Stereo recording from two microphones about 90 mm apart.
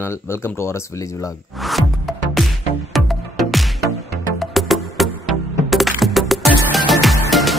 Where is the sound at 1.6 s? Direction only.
Centre (ahead or behind).